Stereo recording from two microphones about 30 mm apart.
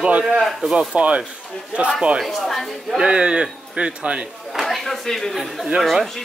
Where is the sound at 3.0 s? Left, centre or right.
Right.